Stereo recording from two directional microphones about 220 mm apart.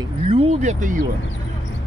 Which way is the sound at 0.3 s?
25° right (ahead or behind).